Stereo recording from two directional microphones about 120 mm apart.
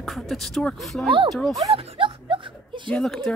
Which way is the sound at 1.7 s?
50° right (ahead or behind).